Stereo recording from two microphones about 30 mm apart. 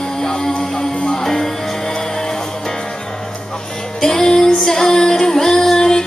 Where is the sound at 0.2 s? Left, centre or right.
Centre.